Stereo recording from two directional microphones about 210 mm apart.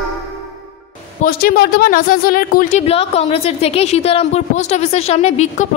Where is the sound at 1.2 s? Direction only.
45° left (ahead or behind).